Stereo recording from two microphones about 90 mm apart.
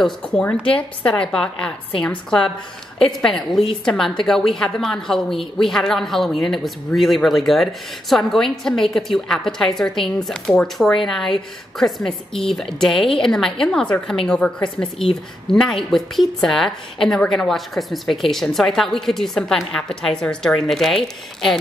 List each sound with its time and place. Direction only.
0.0 s a woman's voice: 10° left (ahead or behind)